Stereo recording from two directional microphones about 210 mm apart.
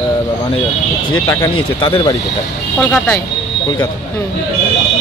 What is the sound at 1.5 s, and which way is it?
Speech, 25° left (ahead or behind).